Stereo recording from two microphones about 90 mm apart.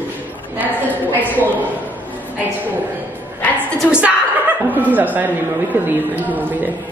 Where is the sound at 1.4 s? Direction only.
20° right (ahead or behind).